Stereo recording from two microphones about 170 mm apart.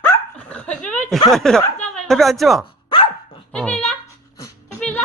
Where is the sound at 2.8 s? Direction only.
30° left (ahead or behind).